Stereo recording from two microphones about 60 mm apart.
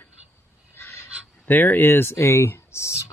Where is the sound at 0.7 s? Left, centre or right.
Left.